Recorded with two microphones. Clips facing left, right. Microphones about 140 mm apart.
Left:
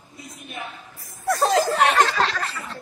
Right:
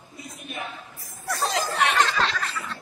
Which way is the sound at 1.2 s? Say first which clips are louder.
Left 7 dB; 50° left (ahead or behind).